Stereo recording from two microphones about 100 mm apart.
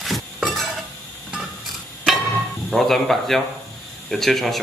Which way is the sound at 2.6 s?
Centre (ahead or behind).